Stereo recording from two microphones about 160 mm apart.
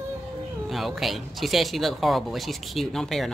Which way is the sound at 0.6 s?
Centre (ahead or behind).